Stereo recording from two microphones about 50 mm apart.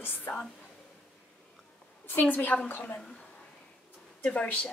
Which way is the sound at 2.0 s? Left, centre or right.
Left.